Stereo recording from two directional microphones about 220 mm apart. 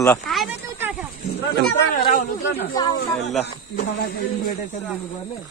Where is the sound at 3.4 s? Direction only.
45° left (ahead or behind).